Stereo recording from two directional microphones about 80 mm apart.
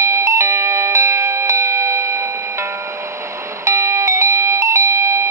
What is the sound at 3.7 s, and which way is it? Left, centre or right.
Doorbell, right.